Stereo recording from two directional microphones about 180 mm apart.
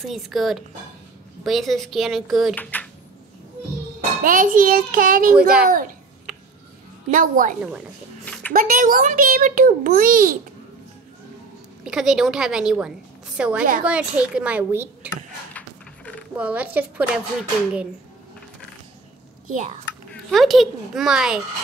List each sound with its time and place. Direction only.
0.0 s a child's voice: centre (ahead or behind)
4.2 s a child's voice: 50° right (ahead or behind)
5.3 s a woman's voice: 5° right (ahead or behind)
6.3 s a sound: centre (ahead or behind)
7.1 s a child's voice: 45° right (ahead or behind)
8.3 s a sound: 5° left (ahead or behind)
8.5 s a child's voice: 50° right (ahead or behind)
11.8 s a child's voice: 5° right (ahead or behind)
15.0 s a sound: 10° left (ahead or behind)
16.3 s a woman's voice: 10° right (ahead or behind)
19.4 s a child's voice: 45° right (ahead or behind)
20.2 s a child's voice: centre (ahead or behind)